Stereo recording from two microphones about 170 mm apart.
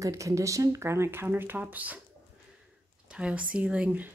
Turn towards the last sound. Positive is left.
turn(degrees=-10)  # may be behind; listen again after turning